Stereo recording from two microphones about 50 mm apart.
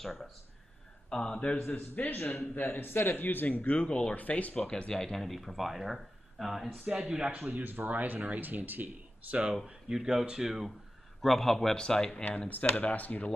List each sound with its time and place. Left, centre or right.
0.0 s speech: centre
1.1 s speech: centre
1.7 s speech: left
4.6 s speech: centre
6.9 s speech: centre
7.4 s speech: right
9.7 s speech: centre
12.3 s speech: left